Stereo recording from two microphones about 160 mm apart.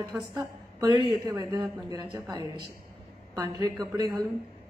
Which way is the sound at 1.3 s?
20° right (ahead or behind).